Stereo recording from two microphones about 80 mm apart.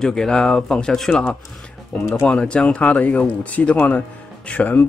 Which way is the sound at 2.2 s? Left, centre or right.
Centre.